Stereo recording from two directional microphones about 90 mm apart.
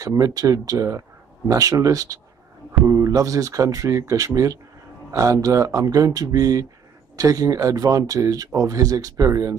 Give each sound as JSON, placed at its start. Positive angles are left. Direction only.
{"t": 0.0, "sound": "speech", "side_deg": -40}